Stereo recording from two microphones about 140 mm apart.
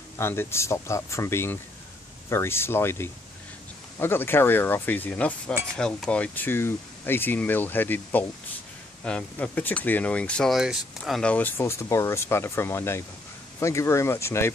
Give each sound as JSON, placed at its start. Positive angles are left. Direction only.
{"t": 0.2, "sound": "speech", "side_deg": 15}